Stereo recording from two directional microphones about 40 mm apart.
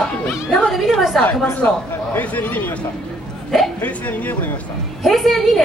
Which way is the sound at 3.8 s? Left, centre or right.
Left.